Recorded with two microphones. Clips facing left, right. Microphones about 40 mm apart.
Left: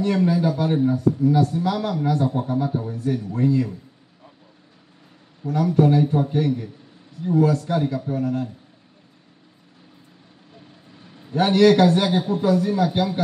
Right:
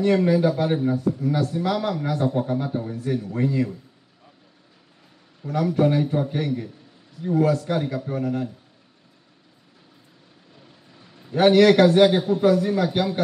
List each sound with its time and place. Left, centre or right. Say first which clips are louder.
0.0 s speech: right 1 dB; right
5.5 s speech: left 2 dB; right
7.2 s speech: left 1 dB; right
11.3 s speech: right 1 dB; right